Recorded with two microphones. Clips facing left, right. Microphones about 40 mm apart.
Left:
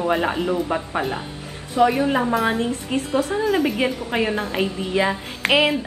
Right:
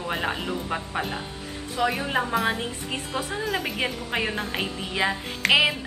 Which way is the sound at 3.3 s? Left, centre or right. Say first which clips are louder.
Left 7 dB; centre.